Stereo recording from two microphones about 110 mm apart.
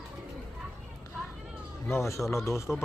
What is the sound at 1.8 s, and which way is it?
Speech, 25° left (ahead or behind).